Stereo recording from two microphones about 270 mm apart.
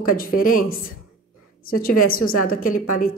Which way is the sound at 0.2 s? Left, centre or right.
Left.